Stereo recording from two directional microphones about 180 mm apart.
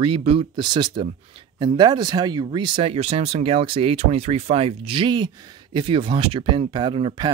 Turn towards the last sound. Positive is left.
turn(degrees=-25)  # may be behind; listen again after turning